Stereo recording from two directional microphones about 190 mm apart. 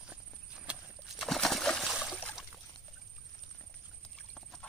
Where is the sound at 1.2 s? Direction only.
Centre (ahead or behind).